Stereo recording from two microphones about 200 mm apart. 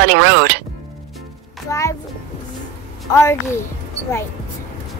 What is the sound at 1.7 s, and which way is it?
Speech, 15° left (ahead or behind).